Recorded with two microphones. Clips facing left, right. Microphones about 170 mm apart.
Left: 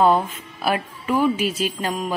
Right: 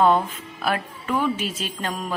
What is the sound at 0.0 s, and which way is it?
A woman's voice, 5° left (ahead or behind).